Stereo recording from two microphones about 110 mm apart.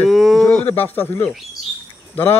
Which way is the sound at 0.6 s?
15° left (ahead or behind).